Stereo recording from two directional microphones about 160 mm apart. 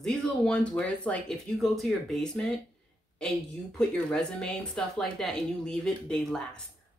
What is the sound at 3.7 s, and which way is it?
Speech, 5° left (ahead or behind).